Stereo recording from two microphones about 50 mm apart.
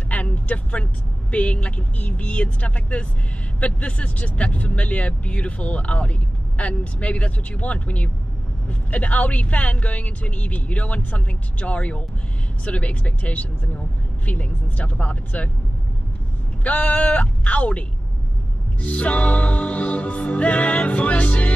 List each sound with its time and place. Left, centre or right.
0.1 s vehicle: left
1.3 s speech: left
16.6 s speech: left